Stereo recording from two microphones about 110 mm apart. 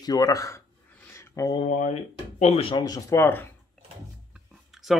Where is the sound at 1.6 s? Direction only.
90° left.